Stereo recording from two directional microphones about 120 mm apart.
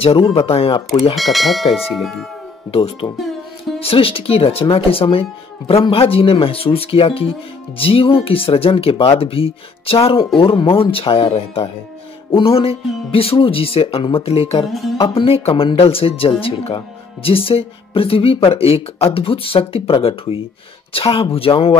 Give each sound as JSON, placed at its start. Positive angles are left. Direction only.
{"t": 0.0, "sound": "speech", "side_deg": 55}
{"t": 1.1, "sound": "speech", "side_deg": 0}
{"t": 2.7, "sound": "speech", "side_deg": 55}